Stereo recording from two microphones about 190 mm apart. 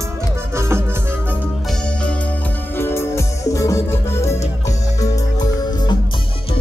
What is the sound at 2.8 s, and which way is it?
Music, 10° left (ahead or behind).